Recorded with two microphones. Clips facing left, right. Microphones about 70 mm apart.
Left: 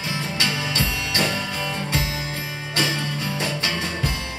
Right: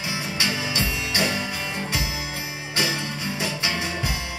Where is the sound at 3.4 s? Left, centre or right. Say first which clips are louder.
Even; centre.